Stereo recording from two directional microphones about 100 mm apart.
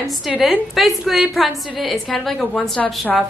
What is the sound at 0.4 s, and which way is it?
A woman's voice, centre (ahead or behind).